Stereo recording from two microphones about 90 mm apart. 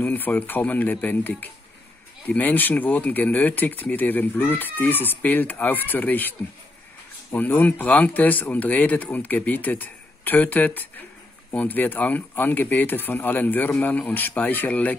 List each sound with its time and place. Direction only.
0.0 s speech: 20° left (ahead or behind)
7.3 s speech: 20° left (ahead or behind)